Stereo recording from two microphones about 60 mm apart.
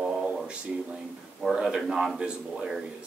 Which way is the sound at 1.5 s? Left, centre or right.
Centre.